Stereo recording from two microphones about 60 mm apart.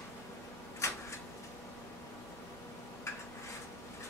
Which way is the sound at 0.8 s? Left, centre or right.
Left.